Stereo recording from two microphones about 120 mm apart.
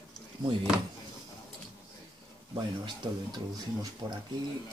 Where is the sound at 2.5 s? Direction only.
35° right (ahead or behind).